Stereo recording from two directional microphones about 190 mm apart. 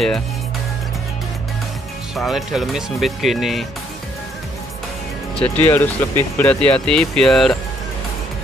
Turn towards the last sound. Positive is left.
turn(degrees=0)  # may be behind; listen again after turning